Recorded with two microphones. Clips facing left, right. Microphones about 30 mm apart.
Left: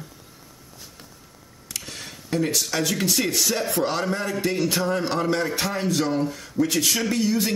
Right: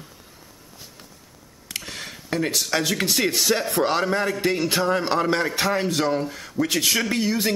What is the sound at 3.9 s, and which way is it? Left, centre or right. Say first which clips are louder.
A man's voice: right 3 dB; right.